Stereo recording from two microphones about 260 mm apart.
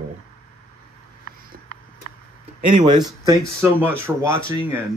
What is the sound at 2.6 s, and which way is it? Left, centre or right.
Speech, right.